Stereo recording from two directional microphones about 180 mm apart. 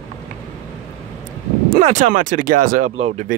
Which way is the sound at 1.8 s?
45° right (ahead or behind).